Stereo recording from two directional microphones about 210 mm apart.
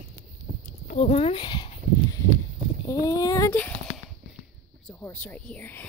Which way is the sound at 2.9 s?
15° left (ahead or behind).